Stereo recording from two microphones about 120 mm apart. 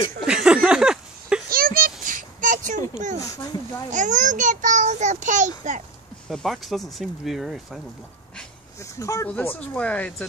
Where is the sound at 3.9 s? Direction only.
90° right.